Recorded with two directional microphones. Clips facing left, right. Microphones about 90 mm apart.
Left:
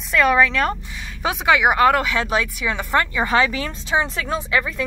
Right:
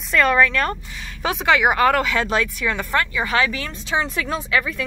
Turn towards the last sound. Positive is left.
turn(degrees=25)  # may be behind; listen again after turning